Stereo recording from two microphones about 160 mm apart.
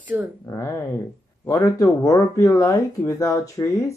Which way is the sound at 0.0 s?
10° right (ahead or behind).